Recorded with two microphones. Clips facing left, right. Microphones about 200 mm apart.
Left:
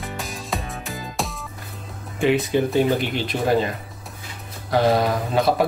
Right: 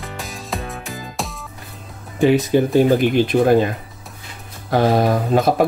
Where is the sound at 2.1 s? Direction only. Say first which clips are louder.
Right 5 dB; 40° right (ahead or behind).